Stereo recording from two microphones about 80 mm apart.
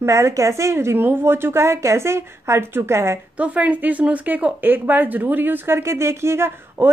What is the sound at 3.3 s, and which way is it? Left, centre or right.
Speech, centre.